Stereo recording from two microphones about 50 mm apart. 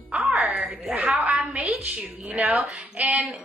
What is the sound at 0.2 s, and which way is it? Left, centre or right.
Music, centre.